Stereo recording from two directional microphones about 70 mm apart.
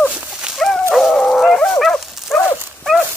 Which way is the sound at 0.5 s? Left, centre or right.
Centre.